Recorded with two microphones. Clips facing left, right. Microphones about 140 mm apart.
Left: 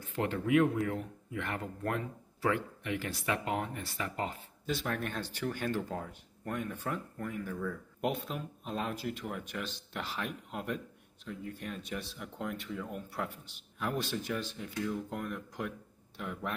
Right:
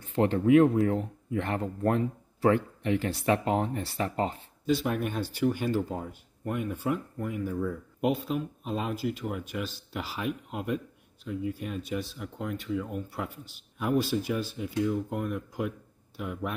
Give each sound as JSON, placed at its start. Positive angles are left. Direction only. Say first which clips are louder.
{"t": 0.0, "sound": "speech", "louder": "right 8 dB", "side_deg": -25}
{"t": 4.8, "sound": "speech", "louder": "right 6 dB", "side_deg": -10}